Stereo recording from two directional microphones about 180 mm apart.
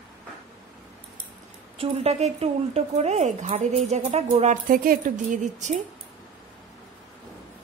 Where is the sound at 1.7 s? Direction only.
35° right (ahead or behind).